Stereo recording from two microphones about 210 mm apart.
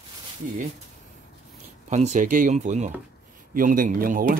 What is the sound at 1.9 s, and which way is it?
Speech, 35° right (ahead or behind).